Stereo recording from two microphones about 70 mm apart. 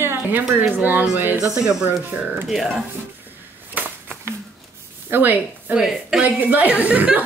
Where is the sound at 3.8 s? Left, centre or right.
Right.